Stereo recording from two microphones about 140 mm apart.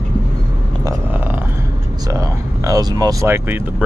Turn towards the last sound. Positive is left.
turn(degrees=-20)  # may be behind; listen again after turning